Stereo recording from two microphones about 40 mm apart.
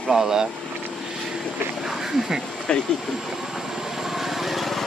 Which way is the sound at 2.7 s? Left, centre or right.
Centre.